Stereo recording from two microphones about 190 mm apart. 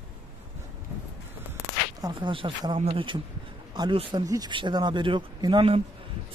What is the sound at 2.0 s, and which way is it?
A man's voice, 20° right (ahead or behind).